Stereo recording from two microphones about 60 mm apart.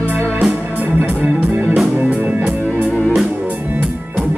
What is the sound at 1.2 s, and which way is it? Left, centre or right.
Music, right.